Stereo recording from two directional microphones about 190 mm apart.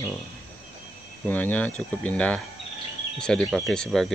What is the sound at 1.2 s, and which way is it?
Speech, 10° left (ahead or behind).